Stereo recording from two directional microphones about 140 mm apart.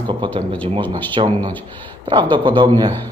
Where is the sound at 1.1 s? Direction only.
40° right (ahead or behind).